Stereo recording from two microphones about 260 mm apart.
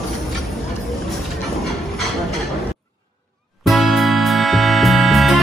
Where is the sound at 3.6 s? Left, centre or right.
Centre.